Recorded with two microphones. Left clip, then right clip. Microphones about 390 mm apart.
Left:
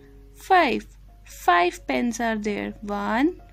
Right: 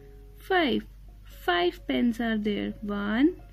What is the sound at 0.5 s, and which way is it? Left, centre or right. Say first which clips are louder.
Speech: left 7 dB; left.